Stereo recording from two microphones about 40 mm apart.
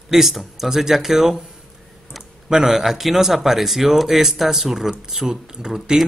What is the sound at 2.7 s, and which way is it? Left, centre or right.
Speech, centre.